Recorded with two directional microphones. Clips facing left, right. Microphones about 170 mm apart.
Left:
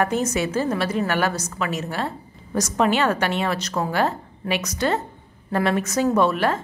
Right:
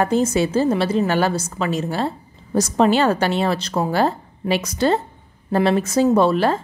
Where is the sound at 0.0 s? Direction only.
30° right (ahead or behind).